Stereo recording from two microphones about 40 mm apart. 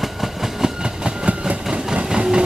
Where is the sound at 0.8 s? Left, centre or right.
Right.